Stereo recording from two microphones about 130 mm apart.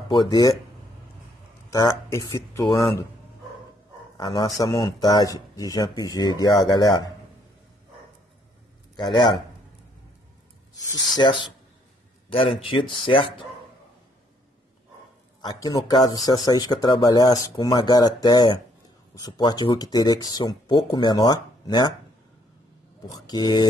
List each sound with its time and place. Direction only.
0.1 s speech: 30° left (ahead or behind)
1.7 s speech: 25° left (ahead or behind)
4.2 s speech: 30° left (ahead or behind)
8.9 s speech: 35° left (ahead or behind)
11.1 s speech: 40° left (ahead or behind)
15.4 s speech: 30° left (ahead or behind)
23.0 s speech: 30° left (ahead or behind)